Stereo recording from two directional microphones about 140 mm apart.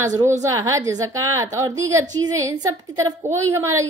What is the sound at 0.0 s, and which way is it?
A woman's voice, 25° right (ahead or behind).